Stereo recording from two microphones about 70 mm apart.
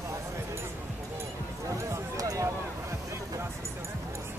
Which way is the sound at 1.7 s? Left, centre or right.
Right.